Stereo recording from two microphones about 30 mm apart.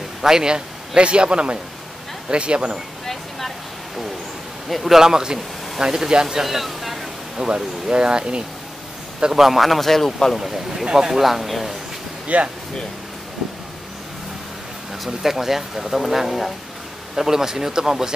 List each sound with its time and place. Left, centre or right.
0.2 s a man's voice: centre
0.5 s speech: right
3.1 s a sound: centre
4.6 s speech: centre
4.9 s speech: centre
6.4 s a sound: centre
7.3 s speech: right
9.3 s speech: centre
10.3 s speech: centre
12.3 s speech: right
15.0 s speech: centre
17.1 s speech: centre